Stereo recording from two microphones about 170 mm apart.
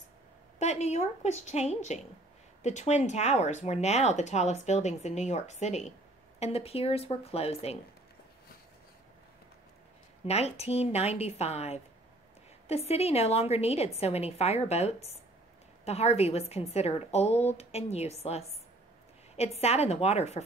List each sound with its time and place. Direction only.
0.6 s a woman's voice: 40° left (ahead or behind)
10.2 s a woman's voice: 40° left (ahead or behind)